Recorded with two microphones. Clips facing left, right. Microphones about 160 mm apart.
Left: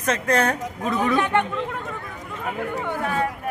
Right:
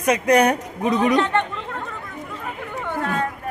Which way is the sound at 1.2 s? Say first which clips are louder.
Right 1 dB; 10° left (ahead or behind).